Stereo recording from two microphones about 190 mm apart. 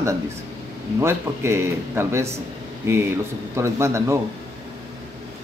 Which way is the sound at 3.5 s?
15° right (ahead or behind).